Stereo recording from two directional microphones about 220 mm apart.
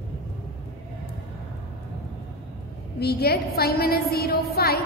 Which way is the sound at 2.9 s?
45° left (ahead or behind).